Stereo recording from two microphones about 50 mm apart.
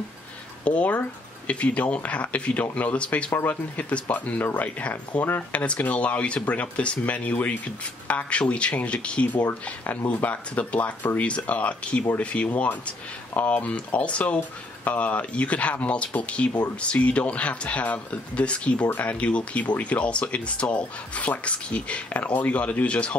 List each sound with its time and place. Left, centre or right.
0.7 s speech: left